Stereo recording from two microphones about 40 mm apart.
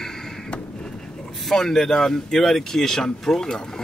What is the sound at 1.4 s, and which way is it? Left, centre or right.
Speech, centre.